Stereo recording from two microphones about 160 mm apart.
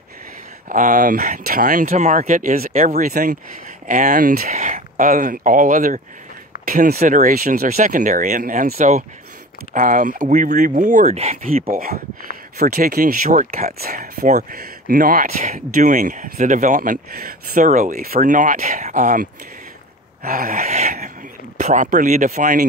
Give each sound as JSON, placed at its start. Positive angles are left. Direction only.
{"t": 0.7, "sound": "speech", "side_deg": -55}
{"t": 8.7, "sound": "speech", "side_deg": -45}
{"t": 11.8, "sound": "speech", "side_deg": -65}
{"t": 20.2, "sound": "speech", "side_deg": -65}
{"t": 20.6, "sound": "speech", "side_deg": -50}